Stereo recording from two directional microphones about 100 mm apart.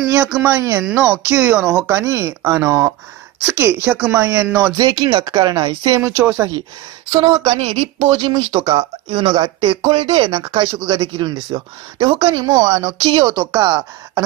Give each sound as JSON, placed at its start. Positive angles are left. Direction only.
{"t": 0.0, "sound": "speech", "side_deg": -30}
{"t": 4.8, "sound": "speech", "side_deg": -45}
{"t": 6.1, "sound": "speech", "side_deg": -20}
{"t": 7.1, "sound": "speech", "side_deg": -45}
{"t": 7.5, "sound": "speech", "side_deg": -70}
{"t": 8.0, "sound": "speech", "side_deg": -50}